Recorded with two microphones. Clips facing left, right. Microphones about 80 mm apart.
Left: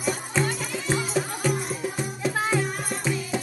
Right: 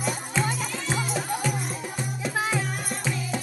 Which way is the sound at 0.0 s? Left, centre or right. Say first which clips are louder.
Left 2 dB; centre.